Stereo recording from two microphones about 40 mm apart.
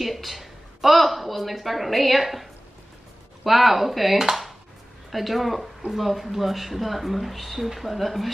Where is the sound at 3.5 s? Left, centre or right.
Centre.